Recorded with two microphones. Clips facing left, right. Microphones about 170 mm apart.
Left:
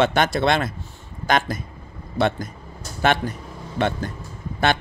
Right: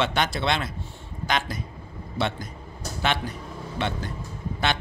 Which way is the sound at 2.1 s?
50° left (ahead or behind).